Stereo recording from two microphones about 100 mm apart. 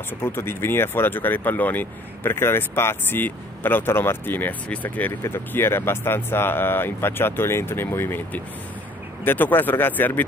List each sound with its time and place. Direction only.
0.2 s speech: 25° left (ahead or behind)